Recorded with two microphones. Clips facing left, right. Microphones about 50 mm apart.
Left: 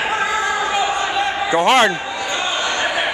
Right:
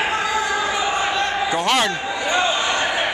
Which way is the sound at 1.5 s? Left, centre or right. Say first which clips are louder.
Left 9 dB; left.